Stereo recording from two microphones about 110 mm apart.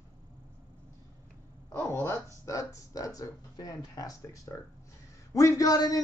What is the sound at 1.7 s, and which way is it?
A man's voice, 20° left (ahead or behind).